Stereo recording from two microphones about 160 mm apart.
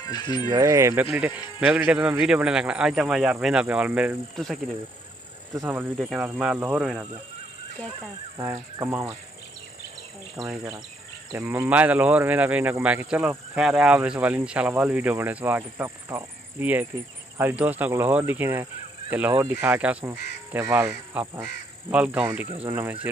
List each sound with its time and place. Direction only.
0.0 s speech: 25° left (ahead or behind)
0.5 s speech: 20° right (ahead or behind)
5.5 s speech: 15° right (ahead or behind)
5.9 s speech: 5° right (ahead or behind)
8.4 s speech: 20° right (ahead or behind)
10.4 s speech: 20° right (ahead or behind)